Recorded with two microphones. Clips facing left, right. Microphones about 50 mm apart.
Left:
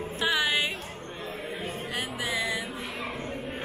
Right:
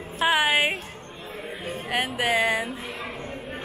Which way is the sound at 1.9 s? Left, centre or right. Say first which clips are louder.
Right 9 dB; right.